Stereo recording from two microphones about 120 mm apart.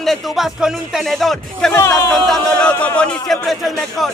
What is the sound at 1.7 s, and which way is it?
Speech, 20° left (ahead or behind).